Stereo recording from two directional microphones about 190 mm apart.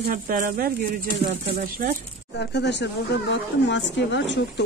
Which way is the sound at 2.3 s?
65° left (ahead or behind).